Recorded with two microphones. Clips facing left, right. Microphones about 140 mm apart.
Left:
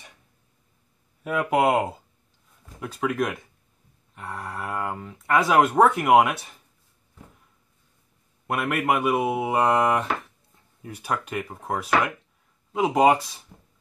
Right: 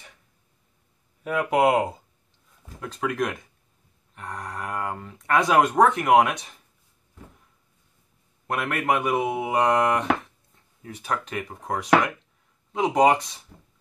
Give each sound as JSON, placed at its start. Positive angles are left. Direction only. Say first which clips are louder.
{"t": 1.2, "sound": "speech", "louder": "right 1 dB", "side_deg": 0}
{"t": 8.5, "sound": "speech", "louder": "left 1 dB", "side_deg": 10}
{"t": 13.5, "sound": "music", "louder": "right 1 dB", "side_deg": 20}